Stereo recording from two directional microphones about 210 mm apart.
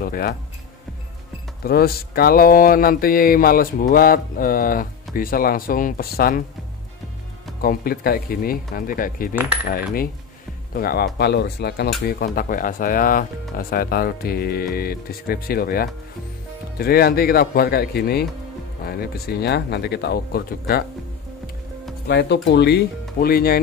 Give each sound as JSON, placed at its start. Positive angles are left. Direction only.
{"t": 0.0, "sound": "speech", "side_deg": 45}
{"t": 1.6, "sound": "speech", "side_deg": 45}
{"t": 7.6, "sound": "speech", "side_deg": 45}
{"t": 9.3, "sound": "coin", "side_deg": -10}
{"t": 9.7, "sound": "speech", "side_deg": 45}
{"t": 22.0, "sound": "speech", "side_deg": 55}